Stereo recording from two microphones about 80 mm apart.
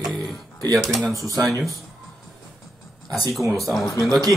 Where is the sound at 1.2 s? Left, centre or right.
Right.